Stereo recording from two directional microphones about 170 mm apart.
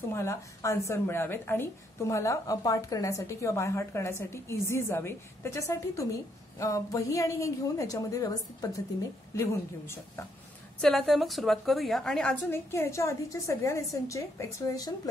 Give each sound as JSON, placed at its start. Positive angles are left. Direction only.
{"t": 0.1, "sound": "a woman's voice", "side_deg": 15}
{"t": 10.8, "sound": "a woman's voice", "side_deg": 0}